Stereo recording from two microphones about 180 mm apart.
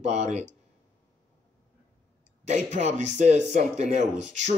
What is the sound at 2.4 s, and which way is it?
Speech, 40° right (ahead or behind).